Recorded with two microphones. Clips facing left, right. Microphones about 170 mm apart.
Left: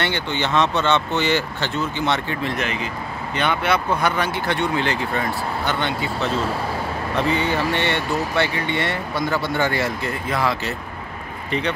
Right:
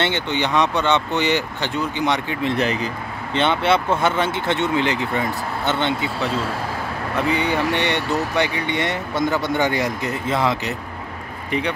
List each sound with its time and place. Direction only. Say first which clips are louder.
0.0 s speech: right 2 dB; 20° right (ahead or behind)
2.5 s speech: right 4 dB; 35° right (ahead or behind)